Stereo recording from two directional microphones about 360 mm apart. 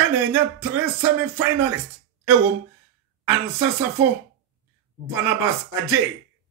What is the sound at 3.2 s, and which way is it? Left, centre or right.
Speech, centre.